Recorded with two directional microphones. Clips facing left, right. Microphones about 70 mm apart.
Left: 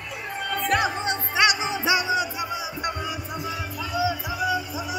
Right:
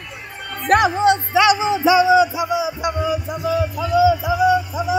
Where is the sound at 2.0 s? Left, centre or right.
Right.